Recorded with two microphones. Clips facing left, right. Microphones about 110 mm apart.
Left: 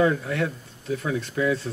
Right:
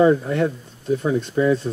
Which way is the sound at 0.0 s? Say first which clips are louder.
Right 6 dB; 30° right (ahead or behind).